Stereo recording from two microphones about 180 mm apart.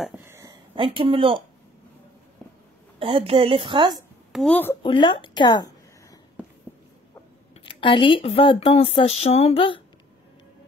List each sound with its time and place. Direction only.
0.2 s a sound: 15° right (ahead or behind)
3.0 s a woman's voice: 30° right (ahead or behind)
4.3 s speech: 5° left (ahead or behind)
4.8 s a woman's voice: 25° left (ahead or behind)
7.6 s speech: 30° left (ahead or behind)